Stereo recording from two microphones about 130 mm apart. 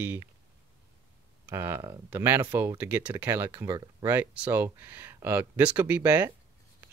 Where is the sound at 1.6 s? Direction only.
20° right (ahead or behind).